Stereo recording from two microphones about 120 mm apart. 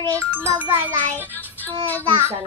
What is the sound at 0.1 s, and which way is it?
Child singing, 25° right (ahead or behind).